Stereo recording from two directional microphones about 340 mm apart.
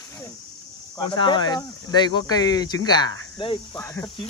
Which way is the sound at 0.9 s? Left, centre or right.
Centre.